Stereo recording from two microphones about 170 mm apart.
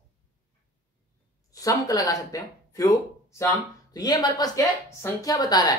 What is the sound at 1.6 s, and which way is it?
Speech, 20° left (ahead or behind).